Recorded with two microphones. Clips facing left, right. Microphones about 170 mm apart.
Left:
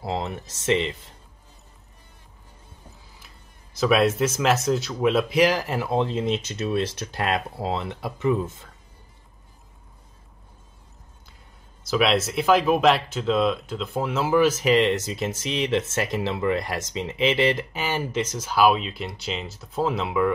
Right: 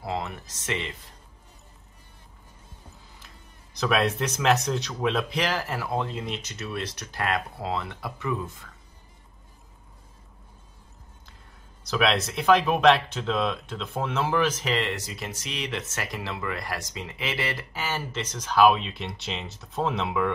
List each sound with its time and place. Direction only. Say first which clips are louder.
0.0 s speech: left 3 dB; 25° left (ahead or behind)
3.7 s speech: left 5 dB; 5° left (ahead or behind); by 8.6 s 25° left (ahead or behind)
11.9 s speech: left 3 dB; centre (ahead or behind)